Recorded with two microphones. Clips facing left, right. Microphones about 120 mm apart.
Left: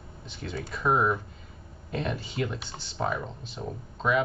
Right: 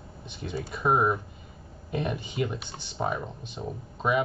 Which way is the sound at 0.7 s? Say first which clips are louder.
Right 1 dB; 20° right (ahead or behind).